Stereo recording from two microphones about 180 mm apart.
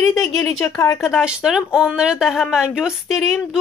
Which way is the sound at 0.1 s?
Centre (ahead or behind).